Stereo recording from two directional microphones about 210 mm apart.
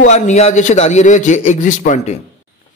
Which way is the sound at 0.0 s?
35° left (ahead or behind).